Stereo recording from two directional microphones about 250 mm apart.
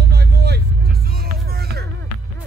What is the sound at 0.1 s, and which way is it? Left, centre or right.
Music, right.